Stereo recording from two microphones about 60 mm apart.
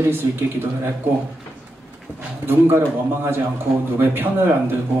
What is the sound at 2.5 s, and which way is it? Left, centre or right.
A man's voice, right.